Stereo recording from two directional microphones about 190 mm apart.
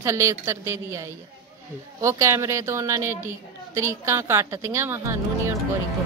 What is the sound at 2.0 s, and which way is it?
A woman's voice, 15° right (ahead or behind).